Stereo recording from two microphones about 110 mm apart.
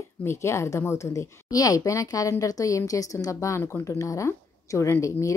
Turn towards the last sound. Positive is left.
turn(degrees=25)  # may be behind; listen again after turning